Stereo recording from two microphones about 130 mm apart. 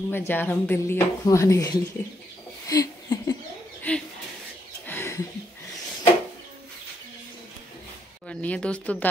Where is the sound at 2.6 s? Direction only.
25° left (ahead or behind).